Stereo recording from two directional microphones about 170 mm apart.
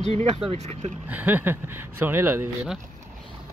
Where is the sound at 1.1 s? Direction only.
10° right (ahead or behind).